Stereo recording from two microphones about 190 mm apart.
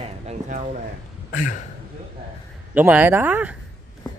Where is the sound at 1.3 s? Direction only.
45° left (ahead or behind).